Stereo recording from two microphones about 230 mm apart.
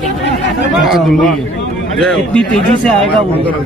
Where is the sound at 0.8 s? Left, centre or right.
Centre.